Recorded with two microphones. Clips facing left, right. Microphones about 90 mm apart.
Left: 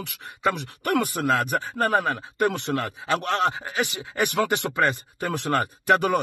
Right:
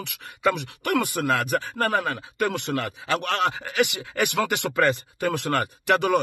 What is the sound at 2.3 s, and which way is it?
Speech, 30° left (ahead or behind).